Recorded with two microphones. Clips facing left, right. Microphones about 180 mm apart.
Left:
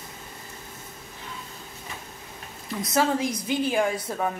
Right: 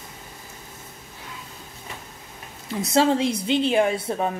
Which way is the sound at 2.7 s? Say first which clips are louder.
Right 4 dB; 25° right (ahead or behind).